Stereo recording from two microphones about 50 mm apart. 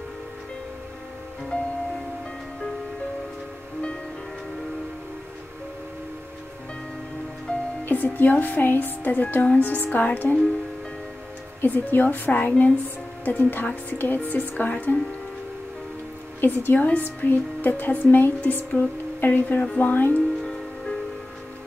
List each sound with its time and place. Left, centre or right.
7.5 s music: centre
7.8 s speech: left
11.6 s speech: left
16.3 s a woman's voice: left
16.7 s speech: left
20.2 s music: centre